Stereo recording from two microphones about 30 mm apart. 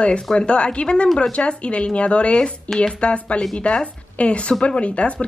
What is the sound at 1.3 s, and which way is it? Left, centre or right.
Speech, left.